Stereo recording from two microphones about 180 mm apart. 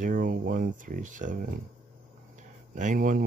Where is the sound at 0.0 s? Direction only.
50° right (ahead or behind).